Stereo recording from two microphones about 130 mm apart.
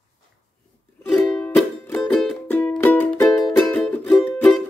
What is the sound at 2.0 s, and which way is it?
Music, 10° left (ahead or behind).